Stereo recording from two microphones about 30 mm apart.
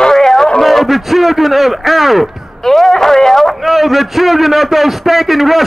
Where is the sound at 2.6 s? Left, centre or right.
Centre.